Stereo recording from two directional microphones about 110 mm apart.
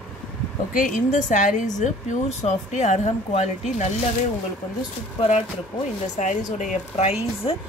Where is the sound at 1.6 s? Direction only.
90° left.